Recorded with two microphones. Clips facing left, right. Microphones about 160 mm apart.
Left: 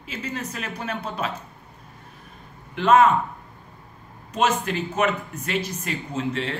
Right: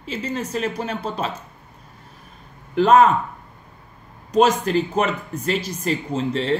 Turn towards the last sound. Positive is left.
turn(degrees=-35)  # may be behind; listen again after turning